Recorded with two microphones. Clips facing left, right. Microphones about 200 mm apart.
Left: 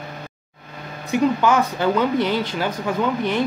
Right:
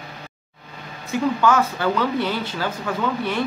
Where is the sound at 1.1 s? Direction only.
15° left (ahead or behind).